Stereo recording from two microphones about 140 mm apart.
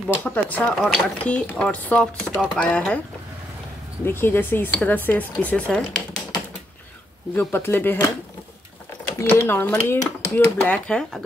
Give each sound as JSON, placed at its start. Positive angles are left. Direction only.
{"t": 0.2, "sound": "speech", "side_deg": 10}
{"t": 4.0, "sound": "speech", "side_deg": 15}
{"t": 7.3, "sound": "speech", "side_deg": 15}